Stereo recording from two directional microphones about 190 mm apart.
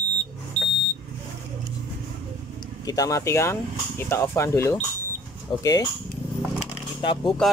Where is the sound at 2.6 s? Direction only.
20° left (ahead or behind).